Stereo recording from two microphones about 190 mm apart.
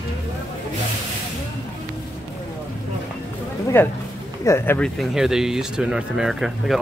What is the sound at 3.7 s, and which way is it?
Speech, 10° left (ahead or behind).